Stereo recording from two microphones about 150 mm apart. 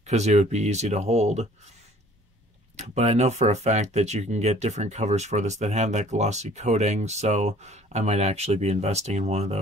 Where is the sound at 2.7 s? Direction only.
45° right (ahead or behind).